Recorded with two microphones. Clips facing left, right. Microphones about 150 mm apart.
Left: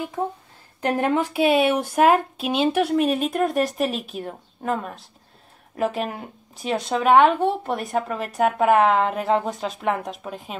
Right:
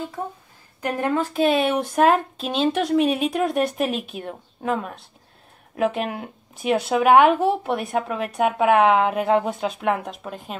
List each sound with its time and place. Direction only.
0.9 s a woman's voice: 20° left (ahead or behind)
1.3 s speech: 5° left (ahead or behind)